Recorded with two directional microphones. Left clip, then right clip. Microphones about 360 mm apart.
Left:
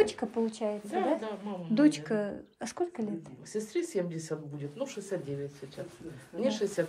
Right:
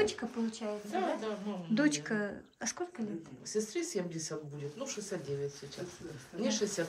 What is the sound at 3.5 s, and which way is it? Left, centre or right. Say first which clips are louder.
A woman's voice: left 2 dB; left.